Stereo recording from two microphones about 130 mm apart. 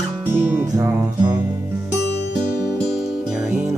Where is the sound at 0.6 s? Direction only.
25° right (ahead or behind).